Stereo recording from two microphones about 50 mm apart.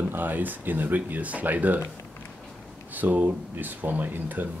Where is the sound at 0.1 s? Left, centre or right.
Right.